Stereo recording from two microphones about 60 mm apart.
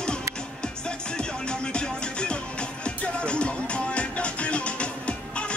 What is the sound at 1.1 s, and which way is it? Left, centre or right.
Music, centre.